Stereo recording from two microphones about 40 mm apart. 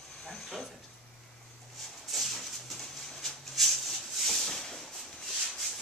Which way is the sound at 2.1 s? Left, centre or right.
Centre.